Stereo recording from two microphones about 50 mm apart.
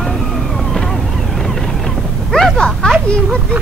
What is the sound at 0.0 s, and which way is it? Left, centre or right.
Vehicle, centre.